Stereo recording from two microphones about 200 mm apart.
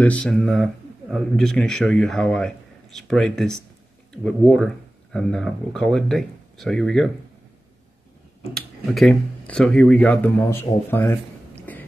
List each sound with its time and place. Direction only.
0.0 s speech: 5° left (ahead or behind)
8.5 s speech: centre (ahead or behind)
11.7 s a sound: 10° left (ahead or behind)